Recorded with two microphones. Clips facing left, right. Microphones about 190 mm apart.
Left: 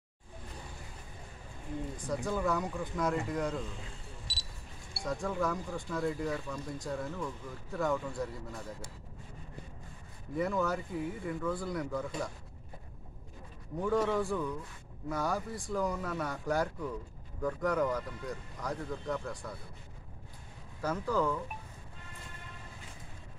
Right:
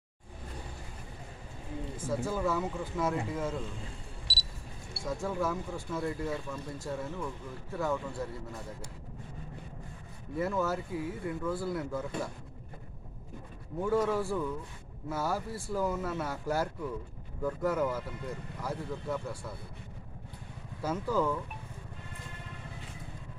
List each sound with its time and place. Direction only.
2.0 s speech: 5° right (ahead or behind)
5.0 s speech: centre (ahead or behind)
10.3 s speech: 5° right (ahead or behind)
13.8 s speech: 5° right (ahead or behind)
20.8 s speech: 10° right (ahead or behind)